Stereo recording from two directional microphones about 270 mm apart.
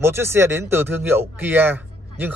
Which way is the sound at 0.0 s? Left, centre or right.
Centre.